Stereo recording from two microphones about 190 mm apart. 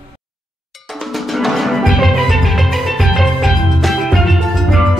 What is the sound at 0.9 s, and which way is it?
Music, centre (ahead or behind).